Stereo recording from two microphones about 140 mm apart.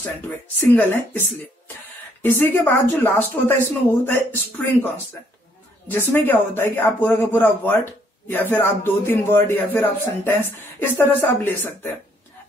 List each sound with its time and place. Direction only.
0.6 s speech: 15° left (ahead or behind)